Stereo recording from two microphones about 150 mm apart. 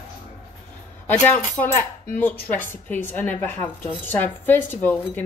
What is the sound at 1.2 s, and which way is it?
A woman's voice, 10° left (ahead or behind).